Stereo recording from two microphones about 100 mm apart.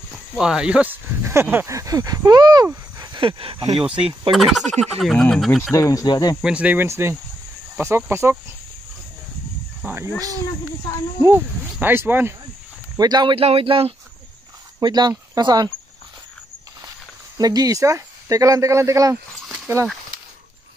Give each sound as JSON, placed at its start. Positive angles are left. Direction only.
{"t": 0.4, "sound": "speech", "side_deg": -10}
{"t": 1.2, "sound": "speech", "side_deg": -25}
{"t": 3.2, "sound": "speech", "side_deg": -65}
{"t": 4.3, "sound": "speech", "side_deg": 0}
{"t": 5.6, "sound": "speech", "side_deg": 35}
{"t": 6.4, "sound": "speech", "side_deg": -15}
{"t": 6.9, "sound": "speech", "side_deg": -25}
{"t": 10.1, "sound": "speech", "side_deg": -35}
{"t": 11.1, "sound": "speech", "side_deg": -25}
{"t": 12.9, "sound": "speech", "side_deg": -40}
{"t": 13.3, "sound": "speech", "side_deg": -70}
{"t": 14.8, "sound": "speech", "side_deg": -45}
{"t": 17.4, "sound": "speech", "side_deg": -40}